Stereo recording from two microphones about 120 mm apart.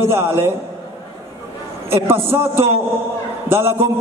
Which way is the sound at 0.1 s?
20° right (ahead or behind).